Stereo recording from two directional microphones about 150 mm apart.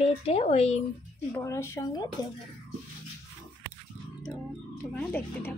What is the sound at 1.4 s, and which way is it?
Speech, 15° left (ahead or behind).